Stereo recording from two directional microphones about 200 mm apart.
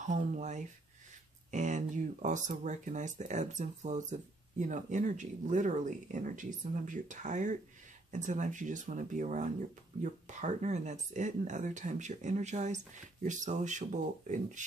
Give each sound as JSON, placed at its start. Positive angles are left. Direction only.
{"t": 0.0, "sound": "speech", "side_deg": -35}